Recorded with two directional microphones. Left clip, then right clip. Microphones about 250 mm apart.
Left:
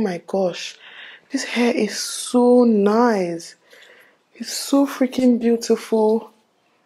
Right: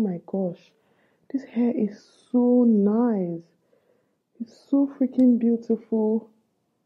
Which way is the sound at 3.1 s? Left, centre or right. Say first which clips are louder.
Left 7 dB; centre.